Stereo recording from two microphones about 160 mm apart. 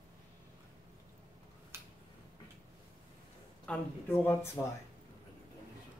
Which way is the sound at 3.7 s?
10° left (ahead or behind).